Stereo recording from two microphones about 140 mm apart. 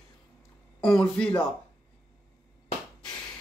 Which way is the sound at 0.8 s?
5° left (ahead or behind).